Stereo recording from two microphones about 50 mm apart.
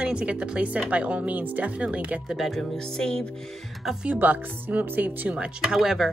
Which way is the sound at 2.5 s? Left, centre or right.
Centre.